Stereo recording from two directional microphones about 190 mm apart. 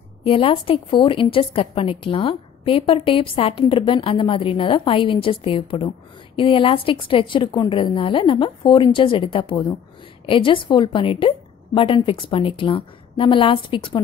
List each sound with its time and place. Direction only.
0.2 s a woman's voice: 30° left (ahead or behind)